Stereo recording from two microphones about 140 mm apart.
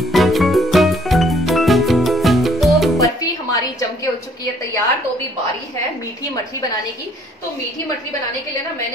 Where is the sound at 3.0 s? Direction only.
25° left (ahead or behind).